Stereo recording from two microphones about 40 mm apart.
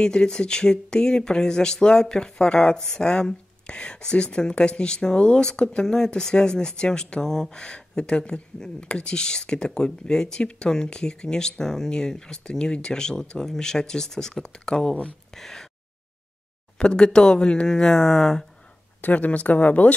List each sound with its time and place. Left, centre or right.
0.0 s speech: centre
16.7 s speech: centre
18.9 s speech: left